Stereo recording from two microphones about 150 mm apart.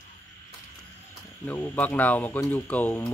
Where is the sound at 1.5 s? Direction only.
15° left (ahead or behind).